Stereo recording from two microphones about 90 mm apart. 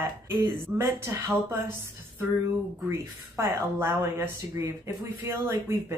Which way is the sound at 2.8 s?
30° right (ahead or behind).